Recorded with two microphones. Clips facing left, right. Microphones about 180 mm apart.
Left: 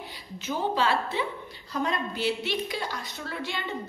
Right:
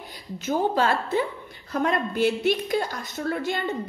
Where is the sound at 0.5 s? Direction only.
45° right (ahead or behind).